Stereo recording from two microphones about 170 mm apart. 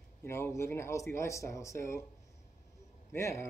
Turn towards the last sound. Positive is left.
turn(degrees=15)  # may be behind; listen again after turning